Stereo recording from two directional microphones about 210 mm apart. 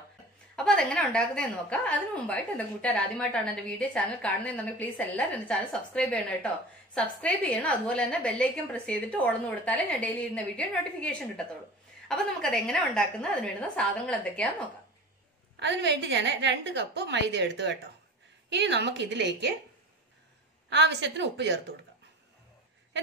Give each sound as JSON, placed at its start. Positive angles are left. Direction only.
{"t": 0.6, "sound": "a woman's voice", "side_deg": 5}
{"t": 15.6, "sound": "a woman's voice", "side_deg": -55}
{"t": 20.7, "sound": "a woman's voice", "side_deg": -55}